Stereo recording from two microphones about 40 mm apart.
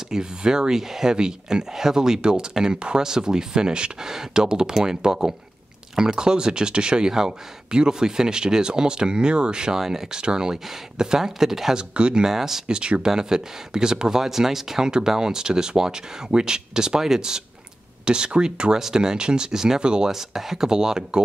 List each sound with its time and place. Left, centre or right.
0.1 s speech: centre
11.7 s speech: right
12.3 s speech: centre
12.7 s speech: right
18.0 s speech: right
18.7 s speech: centre
20.1 s speech: centre